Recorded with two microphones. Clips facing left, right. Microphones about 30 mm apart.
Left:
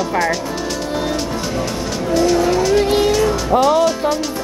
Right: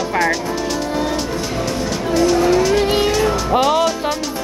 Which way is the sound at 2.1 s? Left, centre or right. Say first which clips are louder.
Even; centre.